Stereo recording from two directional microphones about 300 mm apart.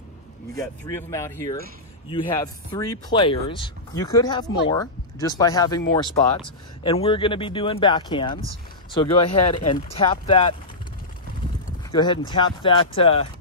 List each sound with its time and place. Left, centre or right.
0.6 s speech: centre
11.9 s speech: centre